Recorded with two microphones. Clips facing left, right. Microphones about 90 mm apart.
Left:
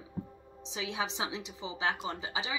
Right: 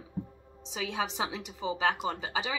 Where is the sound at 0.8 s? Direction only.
45° right (ahead or behind).